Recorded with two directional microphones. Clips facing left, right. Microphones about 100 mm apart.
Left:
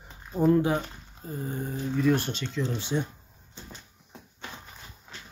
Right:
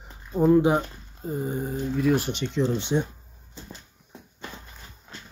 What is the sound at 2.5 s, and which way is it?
Speech, 30° right (ahead or behind).